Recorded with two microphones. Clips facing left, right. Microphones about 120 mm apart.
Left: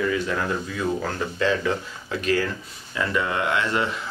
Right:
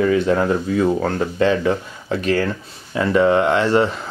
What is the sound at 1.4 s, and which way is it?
Speech, 25° right (ahead or behind).